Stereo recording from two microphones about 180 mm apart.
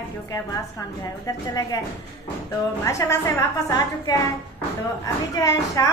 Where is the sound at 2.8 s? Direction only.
15° left (ahead or behind).